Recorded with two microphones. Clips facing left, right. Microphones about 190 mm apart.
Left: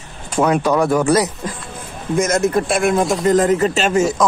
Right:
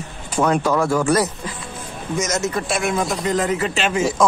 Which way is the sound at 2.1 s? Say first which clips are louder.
Left 6 dB; 55° left (ahead or behind).